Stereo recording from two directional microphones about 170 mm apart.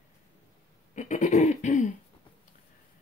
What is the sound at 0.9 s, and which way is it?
Speech, 45° left (ahead or behind).